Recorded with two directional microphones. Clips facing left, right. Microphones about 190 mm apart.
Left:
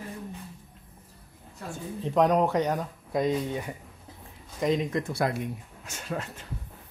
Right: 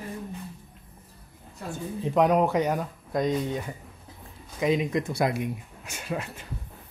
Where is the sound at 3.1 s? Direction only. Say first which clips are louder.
Even; 5° left (ahead or behind).